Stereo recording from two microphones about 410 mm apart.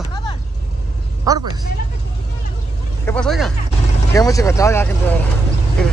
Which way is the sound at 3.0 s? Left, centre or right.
Centre.